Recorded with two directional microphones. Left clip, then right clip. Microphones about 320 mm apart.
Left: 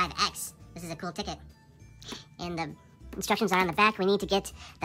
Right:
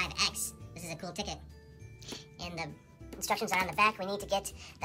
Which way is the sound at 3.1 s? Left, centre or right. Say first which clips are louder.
Left 5 dB; centre.